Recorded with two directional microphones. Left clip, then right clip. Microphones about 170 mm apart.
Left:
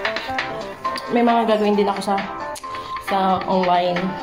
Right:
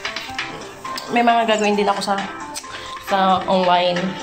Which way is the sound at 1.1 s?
20° left (ahead or behind).